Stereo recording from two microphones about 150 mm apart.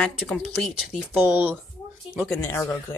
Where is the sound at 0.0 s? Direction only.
Centre (ahead or behind).